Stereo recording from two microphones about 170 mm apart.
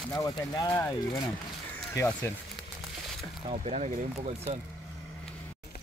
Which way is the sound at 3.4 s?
40° right (ahead or behind).